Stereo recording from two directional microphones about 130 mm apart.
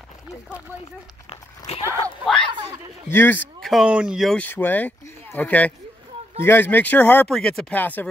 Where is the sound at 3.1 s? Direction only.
15° left (ahead or behind).